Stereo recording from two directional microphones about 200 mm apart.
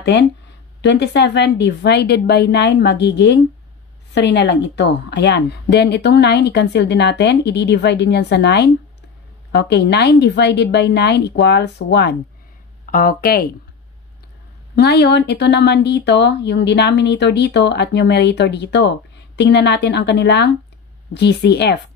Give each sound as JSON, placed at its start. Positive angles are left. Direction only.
{"t": 0.0, "sound": "speech", "side_deg": 60}
{"t": 12.8, "sound": "speech", "side_deg": 45}
{"t": 14.8, "sound": "speech", "side_deg": 55}